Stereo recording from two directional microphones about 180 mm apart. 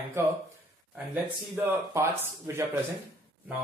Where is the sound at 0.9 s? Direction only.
10° right (ahead or behind).